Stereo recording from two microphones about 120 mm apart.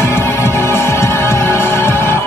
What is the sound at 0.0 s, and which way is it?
Music, 20° left (ahead or behind).